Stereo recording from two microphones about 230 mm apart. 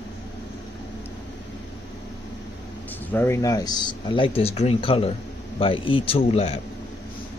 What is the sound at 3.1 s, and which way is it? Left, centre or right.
Speech, centre.